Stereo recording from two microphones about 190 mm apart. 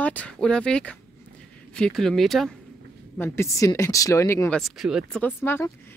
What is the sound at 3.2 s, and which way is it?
Speech, 10° left (ahead or behind).